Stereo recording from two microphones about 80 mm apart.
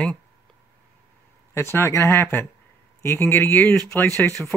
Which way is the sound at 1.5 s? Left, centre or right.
Left.